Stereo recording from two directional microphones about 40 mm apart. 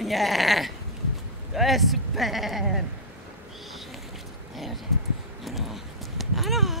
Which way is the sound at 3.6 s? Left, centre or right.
Centre.